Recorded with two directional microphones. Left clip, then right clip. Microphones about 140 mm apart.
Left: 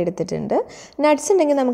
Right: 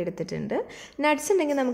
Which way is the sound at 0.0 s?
35° left (ahead or behind).